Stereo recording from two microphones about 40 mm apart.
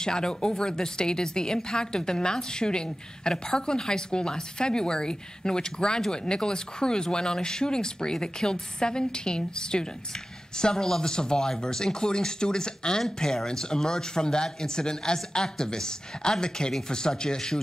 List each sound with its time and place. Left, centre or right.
0.0 s a woman's voice: centre